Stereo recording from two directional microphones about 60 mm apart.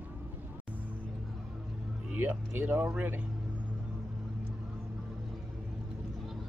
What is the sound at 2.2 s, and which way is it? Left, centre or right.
Speech, right.